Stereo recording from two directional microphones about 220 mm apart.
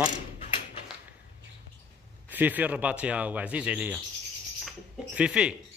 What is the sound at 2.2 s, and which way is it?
Speech, 10° right (ahead or behind).